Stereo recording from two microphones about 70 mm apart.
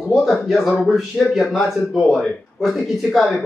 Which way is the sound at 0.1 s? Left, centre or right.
Centre.